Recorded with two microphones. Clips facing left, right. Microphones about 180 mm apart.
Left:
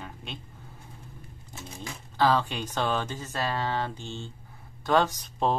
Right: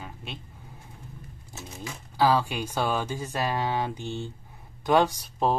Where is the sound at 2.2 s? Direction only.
10° right (ahead or behind).